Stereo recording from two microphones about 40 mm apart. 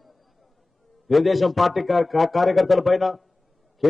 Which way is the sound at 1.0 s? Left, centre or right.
Centre.